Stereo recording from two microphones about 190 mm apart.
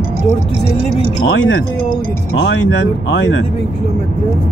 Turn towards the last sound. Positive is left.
turn(degrees=75)  # may be behind; listen again after turning